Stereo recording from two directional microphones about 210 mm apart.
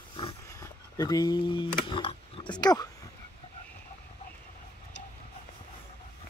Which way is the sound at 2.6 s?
20° left (ahead or behind).